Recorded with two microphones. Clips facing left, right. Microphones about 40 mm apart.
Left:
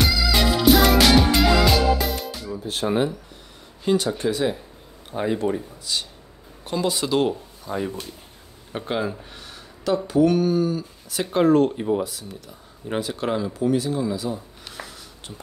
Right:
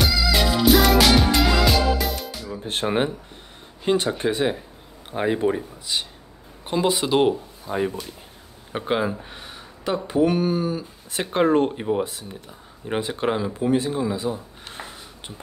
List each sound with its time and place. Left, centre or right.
0.0 s music: centre
2.6 s speech: right